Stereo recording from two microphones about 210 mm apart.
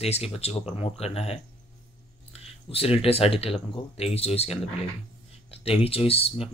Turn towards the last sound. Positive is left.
turn(degrees=30)  # may be behind; listen again after turning